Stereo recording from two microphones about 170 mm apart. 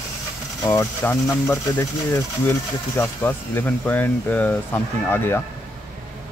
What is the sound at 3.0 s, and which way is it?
Speech, 10° left (ahead or behind).